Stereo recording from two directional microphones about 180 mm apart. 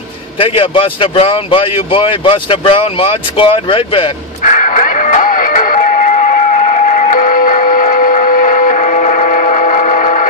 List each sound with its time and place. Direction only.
0.4 s speech: 30° left (ahead or behind)
4.4 s music: 45° left (ahead or behind)